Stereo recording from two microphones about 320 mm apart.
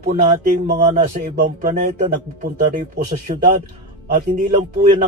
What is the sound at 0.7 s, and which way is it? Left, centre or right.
Speech, right.